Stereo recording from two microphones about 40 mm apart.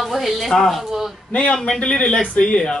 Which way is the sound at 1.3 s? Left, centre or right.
Left.